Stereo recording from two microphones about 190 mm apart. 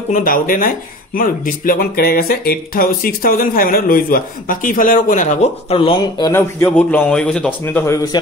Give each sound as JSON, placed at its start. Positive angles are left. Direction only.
{"t": 0.1, "sound": "speech", "side_deg": 45}